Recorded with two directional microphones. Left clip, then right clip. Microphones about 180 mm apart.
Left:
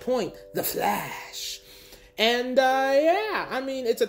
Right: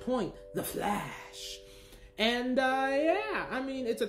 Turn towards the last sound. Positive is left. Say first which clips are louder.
# left 7 dB
turn(degrees=20)  # may be behind; listen again after turning